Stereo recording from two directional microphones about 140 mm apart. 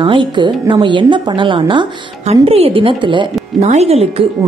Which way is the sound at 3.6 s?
50° right (ahead or behind).